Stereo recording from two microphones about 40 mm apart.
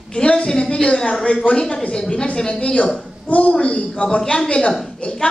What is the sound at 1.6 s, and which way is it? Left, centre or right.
A man's voice, left.